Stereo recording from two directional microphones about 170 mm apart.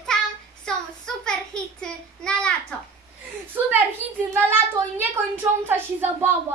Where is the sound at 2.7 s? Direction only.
5° left (ahead or behind).